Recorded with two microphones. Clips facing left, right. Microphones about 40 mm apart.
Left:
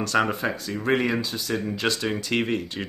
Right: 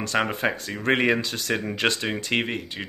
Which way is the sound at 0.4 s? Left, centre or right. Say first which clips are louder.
Right 1 dB; right.